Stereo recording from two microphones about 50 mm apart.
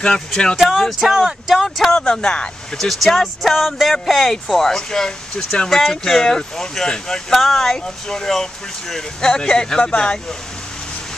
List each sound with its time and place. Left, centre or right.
0.7 s speech: centre
2.8 s speech: centre
5.7 s speech: centre